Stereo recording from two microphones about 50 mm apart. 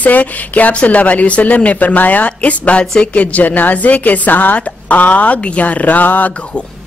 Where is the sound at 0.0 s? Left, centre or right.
Left.